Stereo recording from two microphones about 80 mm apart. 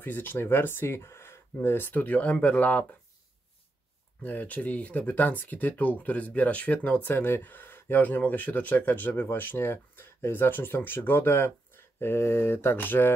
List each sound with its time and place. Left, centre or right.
0.0 s speech: left
4.2 s speech: left